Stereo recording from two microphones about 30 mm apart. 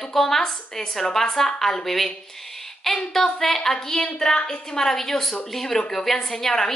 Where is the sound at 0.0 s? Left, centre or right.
Centre.